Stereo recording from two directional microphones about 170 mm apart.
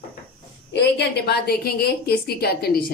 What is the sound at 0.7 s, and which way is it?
A woman's voice, 90° left.